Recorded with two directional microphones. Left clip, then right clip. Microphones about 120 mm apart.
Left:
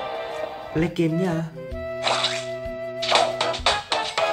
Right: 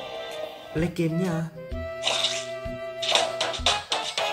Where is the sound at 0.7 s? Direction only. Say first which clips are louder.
Left 4 dB; 15° left (ahead or behind).